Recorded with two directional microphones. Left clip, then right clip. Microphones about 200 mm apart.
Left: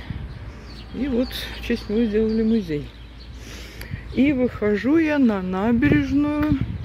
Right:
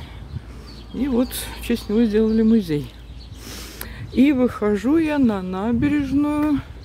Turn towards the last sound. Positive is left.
turn(degrees=-15)  # may be behind; listen again after turning